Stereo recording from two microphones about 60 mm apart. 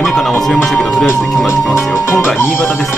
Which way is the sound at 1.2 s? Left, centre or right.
Centre.